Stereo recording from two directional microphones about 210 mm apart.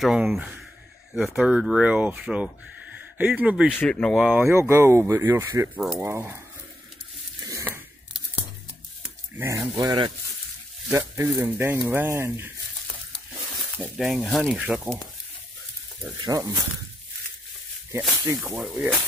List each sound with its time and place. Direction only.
0.0 s speech: centre (ahead or behind)
3.7 s speech: 5° left (ahead or behind)
7.4 s a sound: 15° right (ahead or behind)
9.0 s speech: 10° right (ahead or behind)
13.7 s speech: 5° right (ahead or behind)
16.2 s speech: 15° right (ahead or behind)
18.4 s speech: 5° right (ahead or behind)